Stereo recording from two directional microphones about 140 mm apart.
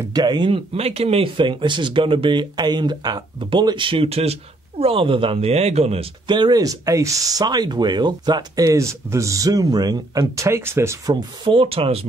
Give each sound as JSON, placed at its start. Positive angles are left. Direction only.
{"t": 0.0, "sound": "speech", "side_deg": -30}
{"t": 0.7, "sound": "speech", "side_deg": -45}
{"t": 6.2, "sound": "speech", "side_deg": -30}